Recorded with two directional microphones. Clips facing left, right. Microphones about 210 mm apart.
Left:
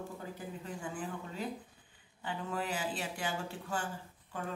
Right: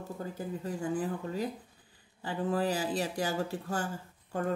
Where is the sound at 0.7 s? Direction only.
40° right (ahead or behind).